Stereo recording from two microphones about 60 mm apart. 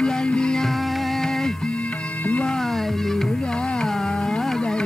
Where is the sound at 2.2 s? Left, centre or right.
Left.